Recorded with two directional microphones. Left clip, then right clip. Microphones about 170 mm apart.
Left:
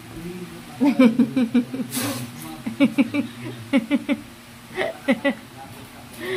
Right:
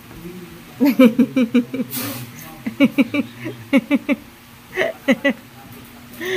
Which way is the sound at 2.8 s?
30° right (ahead or behind).